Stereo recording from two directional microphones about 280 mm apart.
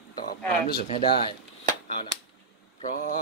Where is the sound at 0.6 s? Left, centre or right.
Left.